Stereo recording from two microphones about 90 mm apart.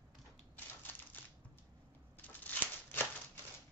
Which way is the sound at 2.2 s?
20° left (ahead or behind).